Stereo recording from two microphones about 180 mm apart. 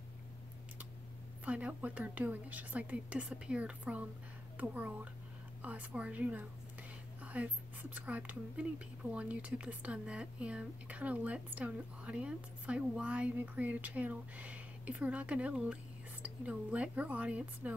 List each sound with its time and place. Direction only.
1.4 s speech: 10° right (ahead or behind)